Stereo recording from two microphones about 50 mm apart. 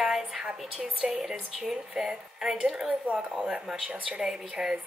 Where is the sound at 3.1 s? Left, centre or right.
Right.